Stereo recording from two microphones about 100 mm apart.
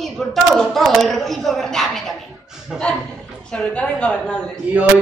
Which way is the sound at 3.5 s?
10° left (ahead or behind).